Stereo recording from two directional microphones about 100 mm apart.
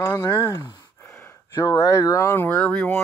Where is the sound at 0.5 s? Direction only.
40° left (ahead or behind).